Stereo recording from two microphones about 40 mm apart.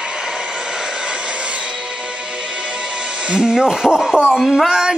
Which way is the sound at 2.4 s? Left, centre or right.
Right.